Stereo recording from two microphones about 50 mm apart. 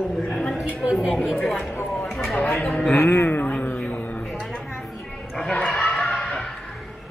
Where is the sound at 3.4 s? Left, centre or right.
Left.